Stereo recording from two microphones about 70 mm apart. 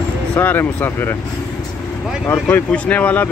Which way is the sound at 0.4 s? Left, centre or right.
Left.